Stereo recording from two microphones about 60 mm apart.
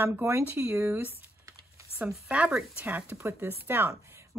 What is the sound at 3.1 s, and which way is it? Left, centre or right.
Speech, right.